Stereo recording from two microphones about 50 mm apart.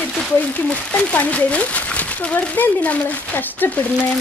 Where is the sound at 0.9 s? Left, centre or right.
Left.